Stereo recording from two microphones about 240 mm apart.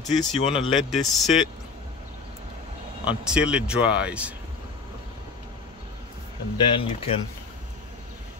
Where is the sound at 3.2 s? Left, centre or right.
Centre.